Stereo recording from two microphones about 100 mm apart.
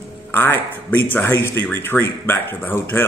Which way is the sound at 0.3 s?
20° left (ahead or behind).